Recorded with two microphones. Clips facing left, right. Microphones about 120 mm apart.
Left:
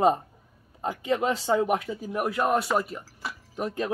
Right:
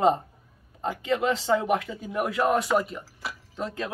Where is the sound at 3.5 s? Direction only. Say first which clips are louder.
Left 3 dB; 20° left (ahead or behind).